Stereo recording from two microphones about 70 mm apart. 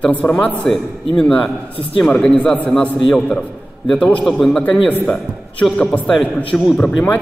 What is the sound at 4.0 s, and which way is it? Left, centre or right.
Speech, centre.